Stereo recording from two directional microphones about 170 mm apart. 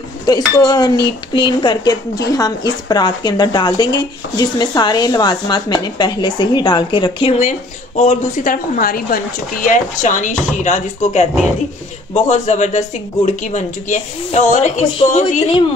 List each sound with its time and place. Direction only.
0.3 s speech: 25° left (ahead or behind); by 15.6 s 40° left (ahead or behind)